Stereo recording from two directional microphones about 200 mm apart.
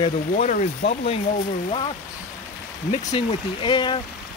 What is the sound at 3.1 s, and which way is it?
Speech, 25° left (ahead or behind).